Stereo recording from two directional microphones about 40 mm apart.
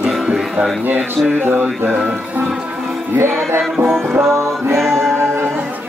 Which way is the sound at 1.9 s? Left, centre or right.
Right.